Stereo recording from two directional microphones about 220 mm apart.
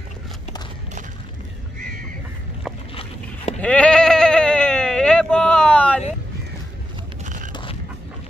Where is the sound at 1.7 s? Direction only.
35° right (ahead or behind).